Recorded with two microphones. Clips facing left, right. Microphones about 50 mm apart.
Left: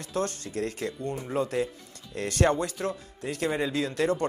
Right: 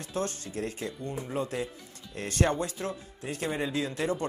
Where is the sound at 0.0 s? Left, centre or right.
Left.